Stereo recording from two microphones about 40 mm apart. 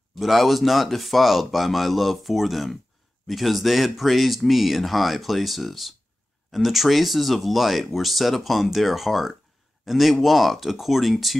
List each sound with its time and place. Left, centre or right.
0.2 s speech: centre